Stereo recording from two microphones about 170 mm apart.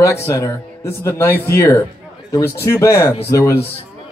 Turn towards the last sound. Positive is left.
turn(degrees=20)  # may be behind; listen again after turning